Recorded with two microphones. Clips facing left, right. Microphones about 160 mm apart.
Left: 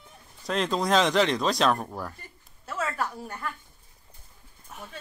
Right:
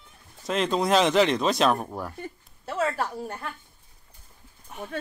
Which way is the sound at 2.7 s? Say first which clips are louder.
Right 4 dB; 30° right (ahead or behind).